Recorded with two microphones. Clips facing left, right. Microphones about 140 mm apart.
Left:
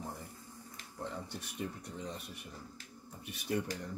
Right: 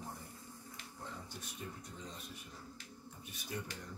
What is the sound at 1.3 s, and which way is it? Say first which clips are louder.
Speech: left 6 dB; 70° left (ahead or behind).